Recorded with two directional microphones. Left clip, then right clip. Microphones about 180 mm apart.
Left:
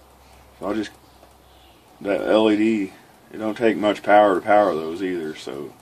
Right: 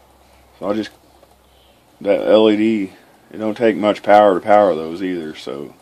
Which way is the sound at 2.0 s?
45° right (ahead or behind).